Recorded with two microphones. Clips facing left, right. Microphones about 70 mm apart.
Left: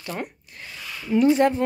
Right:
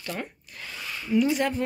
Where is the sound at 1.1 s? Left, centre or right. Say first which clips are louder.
Left 6 dB; left.